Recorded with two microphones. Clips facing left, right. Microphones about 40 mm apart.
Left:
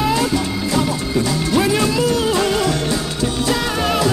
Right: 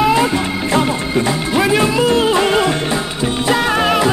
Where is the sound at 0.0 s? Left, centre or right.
Right.